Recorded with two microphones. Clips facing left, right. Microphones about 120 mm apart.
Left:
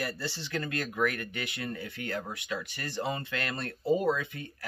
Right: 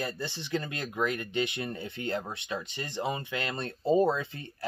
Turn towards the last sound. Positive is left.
turn(degrees=-30)  # may be behind; listen again after turning